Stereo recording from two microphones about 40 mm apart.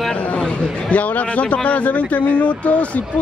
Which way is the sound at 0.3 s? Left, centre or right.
Left.